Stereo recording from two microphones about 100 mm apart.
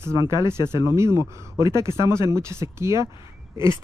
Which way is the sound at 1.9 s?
45° left (ahead or behind).